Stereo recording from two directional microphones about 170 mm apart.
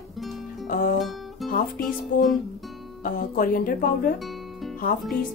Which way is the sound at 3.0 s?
55° left (ahead or behind).